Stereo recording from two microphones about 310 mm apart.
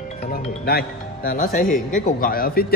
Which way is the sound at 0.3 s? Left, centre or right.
Left.